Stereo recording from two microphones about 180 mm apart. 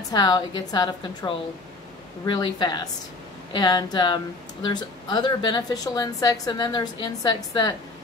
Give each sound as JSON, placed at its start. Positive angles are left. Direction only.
{"t": 0.1, "sound": "a woman's voice", "side_deg": 20}